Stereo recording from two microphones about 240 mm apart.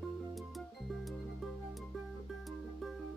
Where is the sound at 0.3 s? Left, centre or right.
Centre.